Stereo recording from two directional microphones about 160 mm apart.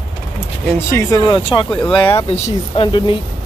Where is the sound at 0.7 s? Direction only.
15° left (ahead or behind).